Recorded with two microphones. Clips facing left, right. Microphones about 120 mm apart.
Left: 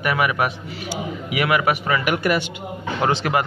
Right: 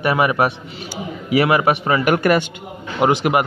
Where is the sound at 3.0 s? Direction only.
20° right (ahead or behind).